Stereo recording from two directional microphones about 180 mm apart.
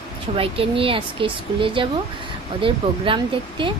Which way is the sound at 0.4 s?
30° right (ahead or behind).